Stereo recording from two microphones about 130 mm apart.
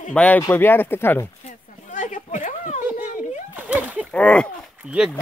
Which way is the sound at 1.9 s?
70° left (ahead or behind).